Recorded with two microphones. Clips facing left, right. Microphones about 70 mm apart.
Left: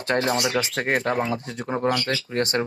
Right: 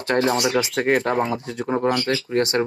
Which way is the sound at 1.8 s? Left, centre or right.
Right.